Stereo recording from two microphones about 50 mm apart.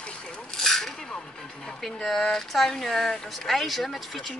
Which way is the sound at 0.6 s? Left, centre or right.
Centre.